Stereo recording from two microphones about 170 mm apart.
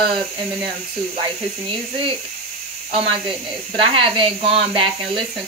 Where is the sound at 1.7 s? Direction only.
30° right (ahead or behind).